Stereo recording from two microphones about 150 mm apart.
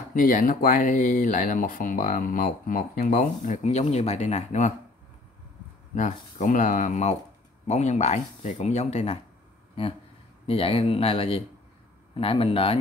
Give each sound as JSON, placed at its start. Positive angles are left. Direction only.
{"t": 0.1, "sound": "speech", "side_deg": 65}
{"t": 5.9, "sound": "speech", "side_deg": 55}
{"t": 10.4, "sound": "speech", "side_deg": 40}